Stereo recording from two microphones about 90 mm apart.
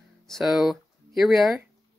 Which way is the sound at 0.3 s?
Centre (ahead or behind).